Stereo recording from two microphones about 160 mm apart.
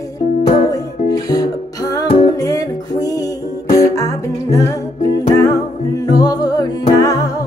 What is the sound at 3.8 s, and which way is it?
Humming, 20° left (ahead or behind).